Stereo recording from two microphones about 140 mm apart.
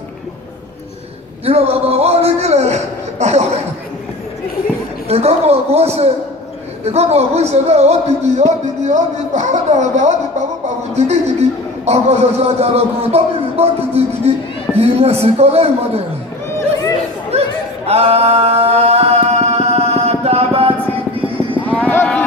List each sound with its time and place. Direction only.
1.4 s a sound: 45° right (ahead or behind)
5.0 s gargling: 45° right (ahead or behind)
6.8 s a man's voice: 50° right (ahead or behind)
17.3 s singing: 45° right (ahead or behind)
21.6 s livestock: 10° left (ahead or behind)